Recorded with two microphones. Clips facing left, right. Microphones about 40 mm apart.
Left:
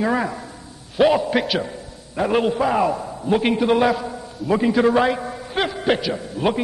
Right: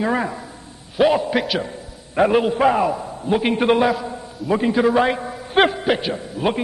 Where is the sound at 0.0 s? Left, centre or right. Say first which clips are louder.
Even; centre.